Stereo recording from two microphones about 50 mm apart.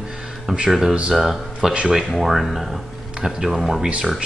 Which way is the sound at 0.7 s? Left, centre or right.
Centre.